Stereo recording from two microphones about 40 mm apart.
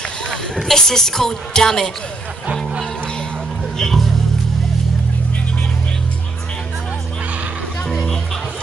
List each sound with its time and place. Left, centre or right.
0.3 s a woman's voice: centre
3.7 s speech: centre